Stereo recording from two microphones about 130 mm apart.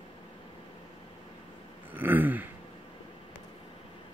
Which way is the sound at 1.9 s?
15° right (ahead or behind).